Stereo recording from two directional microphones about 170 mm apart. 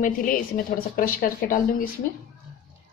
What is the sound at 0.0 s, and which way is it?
A woman's voice, 55° left (ahead or behind).